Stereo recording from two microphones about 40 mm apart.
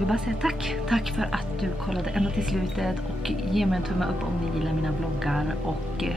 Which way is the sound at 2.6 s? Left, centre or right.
Centre.